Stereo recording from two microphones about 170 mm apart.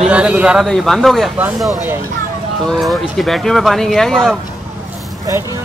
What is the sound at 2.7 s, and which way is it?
Speech, centre (ahead or behind).